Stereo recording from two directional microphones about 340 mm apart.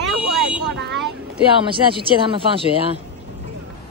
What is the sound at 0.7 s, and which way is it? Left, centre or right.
Vehicle, right.